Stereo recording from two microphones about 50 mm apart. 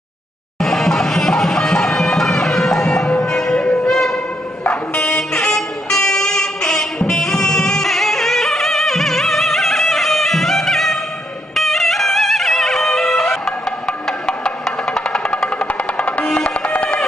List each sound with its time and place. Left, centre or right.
0.6 s music: centre
3.6 s a sound: left
4.6 s vehicle: left
5.5 s music: centre
15.6 s music: left